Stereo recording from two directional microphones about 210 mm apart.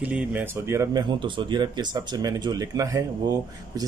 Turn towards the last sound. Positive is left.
turn(degrees=-15)  # may be behind; listen again after turning